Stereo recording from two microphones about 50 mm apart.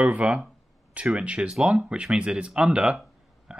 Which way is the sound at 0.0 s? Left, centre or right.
Right.